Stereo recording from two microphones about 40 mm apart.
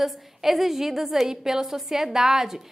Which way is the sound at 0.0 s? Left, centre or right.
Centre.